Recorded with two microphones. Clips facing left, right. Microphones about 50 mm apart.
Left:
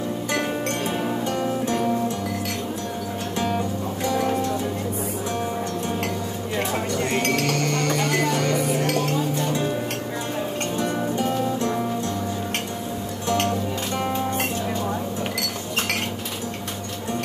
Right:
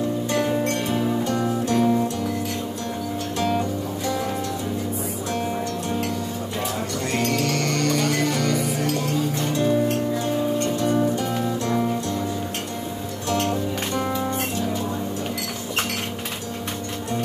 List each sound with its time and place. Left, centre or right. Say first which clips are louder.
1.2 s music: right 1 dB; left
7.5 s music: right 1 dB; left
8.8 s music: left 1 dB; left
11.1 s music: left 1 dB; left